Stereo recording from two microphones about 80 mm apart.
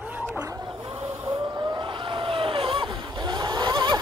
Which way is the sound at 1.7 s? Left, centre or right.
Right.